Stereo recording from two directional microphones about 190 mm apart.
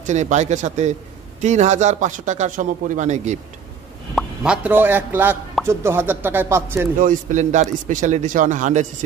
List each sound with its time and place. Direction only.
0.0 s a man's voice: 40° right (ahead or behind)
4.1 s speech: 5° right (ahead or behind)
7.0 s a man's voice: 40° right (ahead or behind)